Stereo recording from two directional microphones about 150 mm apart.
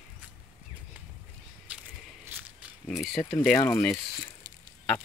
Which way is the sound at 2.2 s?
10° right (ahead or behind).